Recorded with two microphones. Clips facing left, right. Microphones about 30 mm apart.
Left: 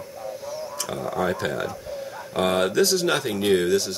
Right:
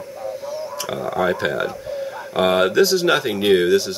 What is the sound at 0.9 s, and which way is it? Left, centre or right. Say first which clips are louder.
Speech: right 5 dB; right.